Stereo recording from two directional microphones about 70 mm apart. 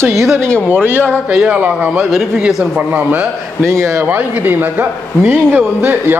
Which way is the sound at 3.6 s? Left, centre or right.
Right.